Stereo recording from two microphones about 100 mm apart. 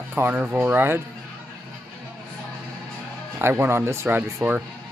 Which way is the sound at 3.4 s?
25° right (ahead or behind).